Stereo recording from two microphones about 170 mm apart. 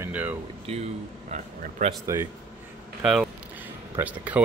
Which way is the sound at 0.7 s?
45° right (ahead or behind).